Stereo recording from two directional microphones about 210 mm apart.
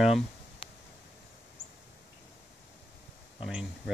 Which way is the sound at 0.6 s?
25° left (ahead or behind).